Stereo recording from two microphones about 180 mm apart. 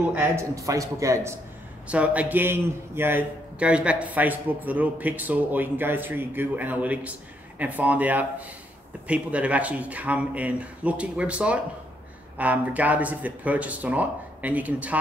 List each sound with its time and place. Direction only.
0.1 s a man's voice: 15° right (ahead or behind)